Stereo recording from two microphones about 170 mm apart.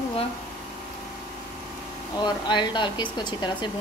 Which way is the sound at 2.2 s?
25° left (ahead or behind).